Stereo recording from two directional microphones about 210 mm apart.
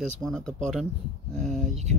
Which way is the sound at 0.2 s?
Centre (ahead or behind).